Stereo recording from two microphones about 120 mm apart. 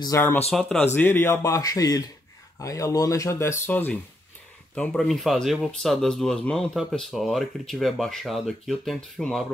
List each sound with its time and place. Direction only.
0.1 s speech: 25° left (ahead or behind)
0.5 s speech: 5° left (ahead or behind)
0.9 s speech: 20° left (ahead or behind)
4.7 s speech: 5° left (ahead or behind)